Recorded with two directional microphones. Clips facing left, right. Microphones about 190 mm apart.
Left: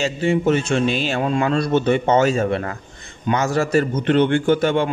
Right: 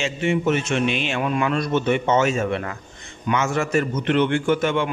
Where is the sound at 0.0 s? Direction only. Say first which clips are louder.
Left 3 dB; 35° left (ahead or behind).